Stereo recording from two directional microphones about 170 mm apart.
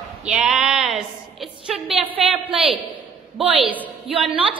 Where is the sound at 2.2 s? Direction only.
Centre (ahead or behind).